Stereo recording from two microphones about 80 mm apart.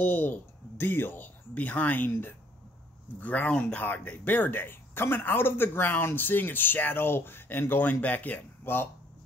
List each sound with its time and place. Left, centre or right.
0.0 s speech: left